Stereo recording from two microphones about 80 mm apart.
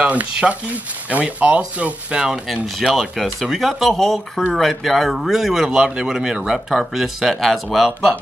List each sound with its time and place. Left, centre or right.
0.0 s speech: centre